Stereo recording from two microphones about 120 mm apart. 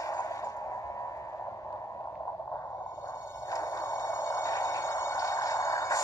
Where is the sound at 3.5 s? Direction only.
25° left (ahead or behind).